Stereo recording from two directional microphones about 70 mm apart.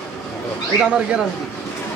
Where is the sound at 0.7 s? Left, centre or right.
Centre.